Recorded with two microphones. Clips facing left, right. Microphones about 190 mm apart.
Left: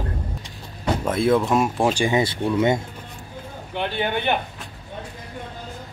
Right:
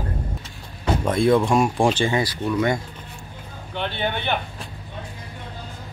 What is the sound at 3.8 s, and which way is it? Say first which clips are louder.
Speech: left 2 dB; 10° left (ahead or behind).